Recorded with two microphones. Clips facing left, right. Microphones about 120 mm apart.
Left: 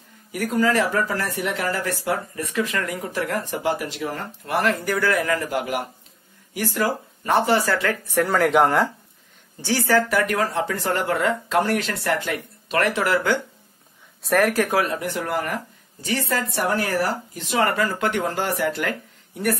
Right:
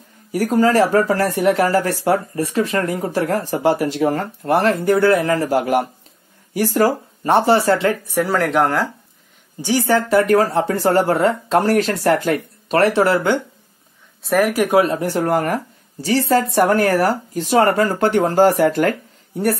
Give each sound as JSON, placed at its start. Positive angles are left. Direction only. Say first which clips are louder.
{"t": 0.3, "sound": "speech", "louder": "right 6 dB", "side_deg": -35}
{"t": 4.5, "sound": "speech", "louder": "right 7 dB", "side_deg": -30}
{"t": 8.1, "sound": "speech", "louder": "right 1 dB", "side_deg": -5}
{"t": 9.6, "sound": "speech", "louder": "right 3 dB", "side_deg": -15}
{"t": 14.2, "sound": "speech", "louder": "right 3 dB", "side_deg": -5}
{"t": 14.6, "sound": "speech", "louder": "right 6 dB", "side_deg": -20}
{"t": 16.5, "sound": "speech", "louder": "right 6 dB", "side_deg": -50}